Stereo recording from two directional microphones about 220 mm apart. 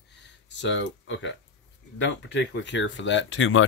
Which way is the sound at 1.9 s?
55° left (ahead or behind).